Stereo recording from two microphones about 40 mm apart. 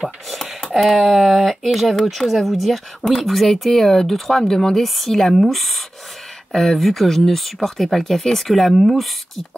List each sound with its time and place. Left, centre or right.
0.0 s computer keyboard: centre
0.9 s speech: centre
3.0 s speech: centre